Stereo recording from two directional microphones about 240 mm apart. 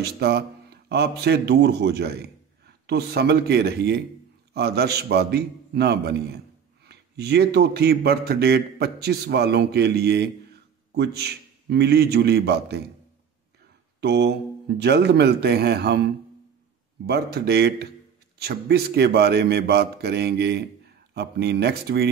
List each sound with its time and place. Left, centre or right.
0.0 s a man's voice: right
14.0 s a man's voice: right